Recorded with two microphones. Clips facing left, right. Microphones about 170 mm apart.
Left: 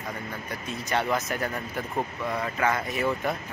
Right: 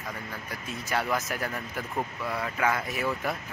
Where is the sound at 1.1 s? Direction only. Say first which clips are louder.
Left 2 dB; centre (ahead or behind).